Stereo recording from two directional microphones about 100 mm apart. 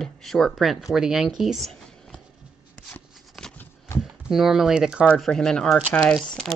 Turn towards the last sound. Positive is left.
turn(degrees=0)  # may be behind; listen again after turning